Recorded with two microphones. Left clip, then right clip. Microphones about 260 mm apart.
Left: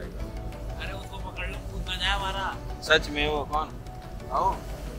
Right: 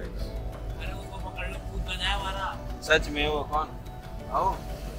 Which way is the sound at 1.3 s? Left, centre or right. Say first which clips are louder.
Left 2 dB; centre.